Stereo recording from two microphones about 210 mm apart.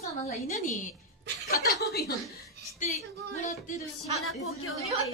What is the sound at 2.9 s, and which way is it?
Music, 35° left (ahead or behind).